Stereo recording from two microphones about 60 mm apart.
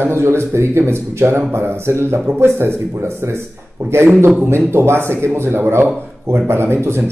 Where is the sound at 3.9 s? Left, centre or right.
Right.